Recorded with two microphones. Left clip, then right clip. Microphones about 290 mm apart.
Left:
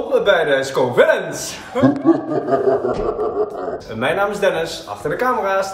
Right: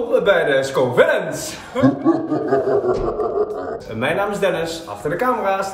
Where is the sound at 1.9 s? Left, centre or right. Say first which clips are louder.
Left 2 dB; right.